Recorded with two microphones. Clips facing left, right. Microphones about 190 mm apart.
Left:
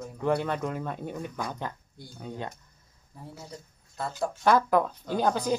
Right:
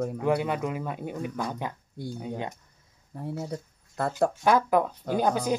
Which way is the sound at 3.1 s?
65° right (ahead or behind).